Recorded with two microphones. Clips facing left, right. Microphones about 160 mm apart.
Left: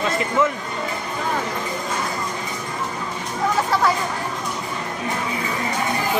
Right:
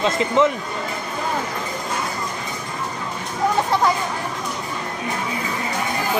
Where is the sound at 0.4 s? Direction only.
20° right (ahead or behind).